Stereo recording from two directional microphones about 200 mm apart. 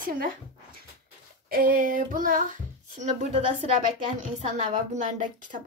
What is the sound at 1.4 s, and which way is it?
Child singing, 45° right (ahead or behind).